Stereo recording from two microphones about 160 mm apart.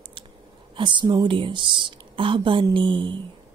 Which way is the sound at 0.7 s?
30° right (ahead or behind).